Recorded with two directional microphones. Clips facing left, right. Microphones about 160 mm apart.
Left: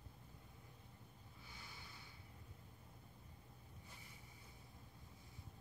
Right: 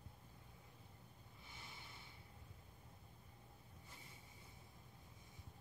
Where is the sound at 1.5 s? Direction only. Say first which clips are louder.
Right 1 dB; 25° right (ahead or behind).